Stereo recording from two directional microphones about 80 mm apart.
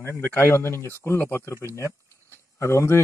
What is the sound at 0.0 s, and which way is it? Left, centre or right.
Speech, left.